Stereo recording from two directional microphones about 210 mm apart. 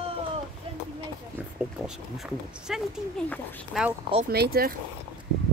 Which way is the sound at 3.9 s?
25° right (ahead or behind).